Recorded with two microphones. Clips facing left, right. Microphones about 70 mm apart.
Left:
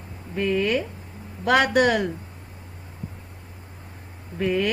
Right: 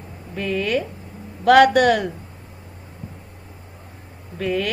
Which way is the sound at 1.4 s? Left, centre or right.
Centre.